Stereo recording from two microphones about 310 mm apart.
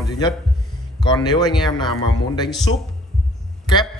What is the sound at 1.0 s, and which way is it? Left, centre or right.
Speech, centre.